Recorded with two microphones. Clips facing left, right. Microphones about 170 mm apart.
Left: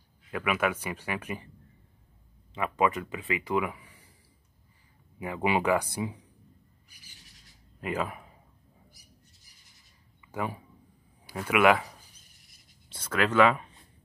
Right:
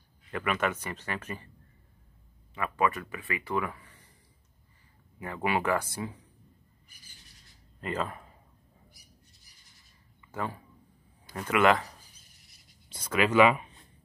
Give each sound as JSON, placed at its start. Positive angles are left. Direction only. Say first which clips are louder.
{"t": 0.3, "sound": "speech", "louder": "left 2 dB", "side_deg": 5}
{"t": 2.5, "sound": "speech", "louder": "left 2 dB", "side_deg": 20}
{"t": 5.2, "sound": "speech", "louder": "left 2 dB", "side_deg": 15}
{"t": 7.8, "sound": "speech", "louder": "left 1 dB", "side_deg": 10}
{"t": 10.2, "sound": "speech", "louder": "left 2 dB", "side_deg": 15}
{"t": 12.9, "sound": "speech", "louder": "right 1 dB", "side_deg": -10}